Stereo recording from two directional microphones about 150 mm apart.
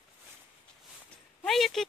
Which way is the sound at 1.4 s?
Centre (ahead or behind).